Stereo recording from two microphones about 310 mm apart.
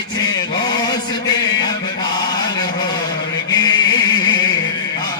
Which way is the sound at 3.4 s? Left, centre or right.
Centre.